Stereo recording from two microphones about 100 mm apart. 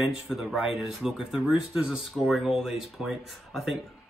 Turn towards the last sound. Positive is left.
turn(degrees=0)  # may be behind; listen again after turning